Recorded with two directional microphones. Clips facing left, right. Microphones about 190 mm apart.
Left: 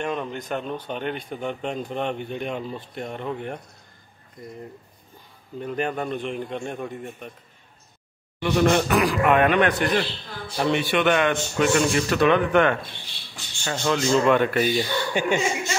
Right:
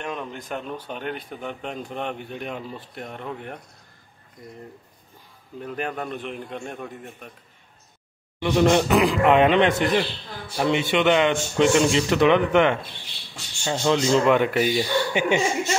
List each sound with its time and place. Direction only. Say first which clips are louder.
0.0 s speech: left 4 dB; 5° right (ahead or behind)
5.6 s speech: left 3 dB; centre (ahead or behind)
8.4 s a man's voice: right 1 dB; 20° right (ahead or behind)